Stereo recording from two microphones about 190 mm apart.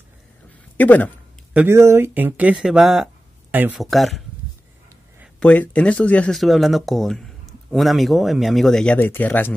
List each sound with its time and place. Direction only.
0.7 s speech: 10° left (ahead or behind)
1.5 s speech: 10° right (ahead or behind)
5.4 s speech: 5° left (ahead or behind)